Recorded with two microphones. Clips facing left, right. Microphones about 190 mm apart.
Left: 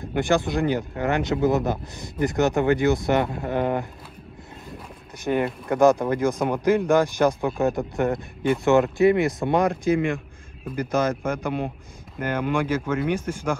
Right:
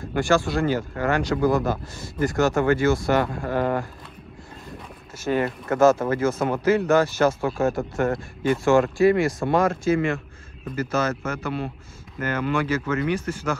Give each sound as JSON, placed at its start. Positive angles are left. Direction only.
{"t": 0.0, "sound": "speech", "side_deg": 20}
{"t": 5.3, "sound": "speech", "side_deg": 10}
{"t": 7.4, "sound": "speech", "side_deg": 0}
{"t": 8.6, "sound": "speech", "side_deg": 20}